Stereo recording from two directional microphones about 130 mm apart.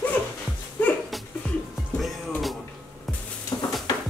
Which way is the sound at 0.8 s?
15° left (ahead or behind).